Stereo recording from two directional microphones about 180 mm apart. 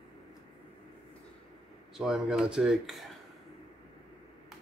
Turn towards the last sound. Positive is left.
turn(degrees=0)  # may be behind; listen again after turning